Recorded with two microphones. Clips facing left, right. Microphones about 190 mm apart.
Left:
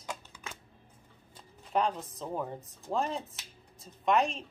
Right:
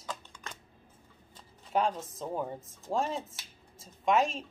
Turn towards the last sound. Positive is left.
turn(degrees=0)  # may be behind; listen again after turning